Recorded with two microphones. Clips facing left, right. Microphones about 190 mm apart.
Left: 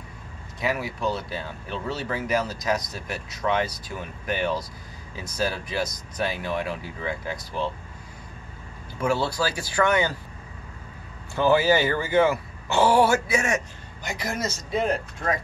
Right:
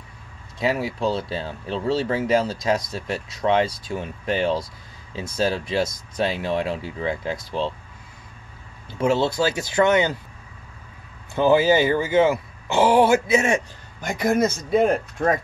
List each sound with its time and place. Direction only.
0.6 s speech: 25° right (ahead or behind)
9.0 s speech: 20° right (ahead or behind)
11.3 s speech: 20° right (ahead or behind)
14.0 s a man's voice: 50° right (ahead or behind)